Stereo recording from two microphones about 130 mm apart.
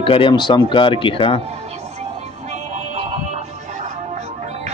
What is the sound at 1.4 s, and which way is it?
Music, 55° right (ahead or behind).